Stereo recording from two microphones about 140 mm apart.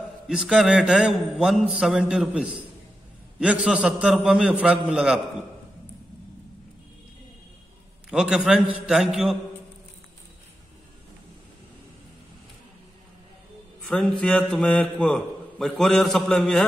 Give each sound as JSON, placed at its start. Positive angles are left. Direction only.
{"t": 0.3, "sound": "a man's voice", "side_deg": -5}
{"t": 8.1, "sound": "a man's voice", "side_deg": -5}
{"t": 13.8, "sound": "a man's voice", "side_deg": 10}